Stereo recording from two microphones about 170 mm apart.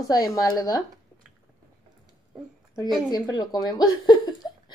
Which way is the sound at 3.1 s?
25° left (ahead or behind).